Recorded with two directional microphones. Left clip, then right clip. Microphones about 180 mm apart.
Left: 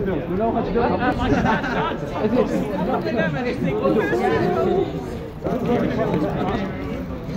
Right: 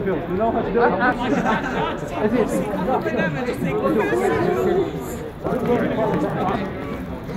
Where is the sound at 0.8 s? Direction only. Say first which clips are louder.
Right 4 dB; 15° left (ahead or behind).